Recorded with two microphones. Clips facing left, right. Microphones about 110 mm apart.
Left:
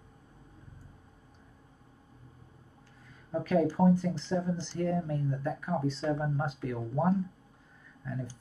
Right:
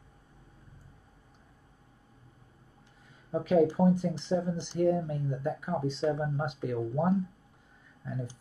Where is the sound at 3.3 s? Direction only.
20° right (ahead or behind).